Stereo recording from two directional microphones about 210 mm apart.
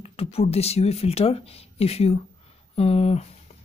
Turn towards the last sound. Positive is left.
turn(degrees=30)  # may be behind; listen again after turning